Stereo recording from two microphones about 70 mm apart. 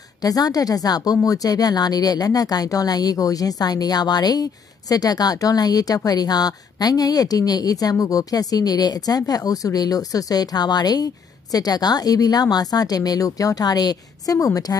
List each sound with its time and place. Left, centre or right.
0.2 s speech: left